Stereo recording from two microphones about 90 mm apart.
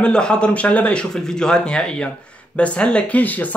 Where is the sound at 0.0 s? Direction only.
10° left (ahead or behind).